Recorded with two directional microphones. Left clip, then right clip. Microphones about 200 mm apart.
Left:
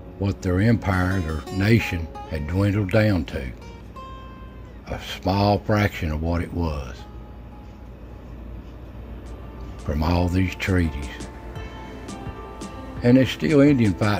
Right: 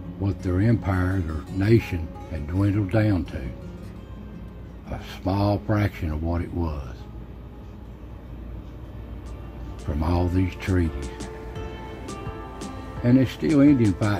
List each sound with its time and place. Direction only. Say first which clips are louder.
0.2 s speech: left 3 dB; 35° left (ahead or behind)
4.8 s speech: left 4 dB; 35° left (ahead or behind)
9.8 s speech: left 3 dB; 35° left (ahead or behind)
12.1 s music: right 1 dB; centre (ahead or behind)
13.0 s speech: left 3 dB; 35° left (ahead or behind)